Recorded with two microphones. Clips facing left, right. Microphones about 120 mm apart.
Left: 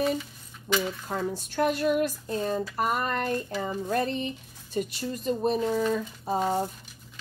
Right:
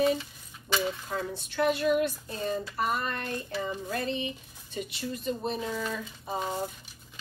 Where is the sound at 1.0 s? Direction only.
40° left (ahead or behind).